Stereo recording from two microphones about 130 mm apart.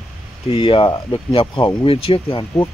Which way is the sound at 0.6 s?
40° left (ahead or behind).